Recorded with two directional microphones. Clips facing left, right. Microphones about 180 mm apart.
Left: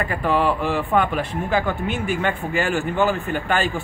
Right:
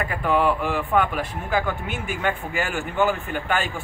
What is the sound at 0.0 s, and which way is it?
Speech, 5° right (ahead or behind).